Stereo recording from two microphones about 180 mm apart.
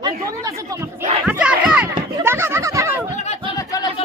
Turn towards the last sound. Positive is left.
turn(degrees=35)  # may be behind; listen again after turning